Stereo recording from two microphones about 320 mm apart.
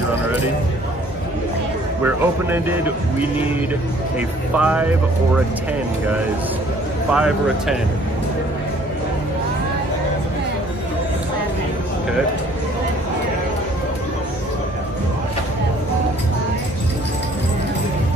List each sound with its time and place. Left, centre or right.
2.0 s speech: centre
4.6 s speech: centre
7.1 s speech: centre